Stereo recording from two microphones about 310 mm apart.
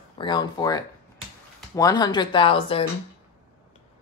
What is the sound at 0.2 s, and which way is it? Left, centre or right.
Speech, centre.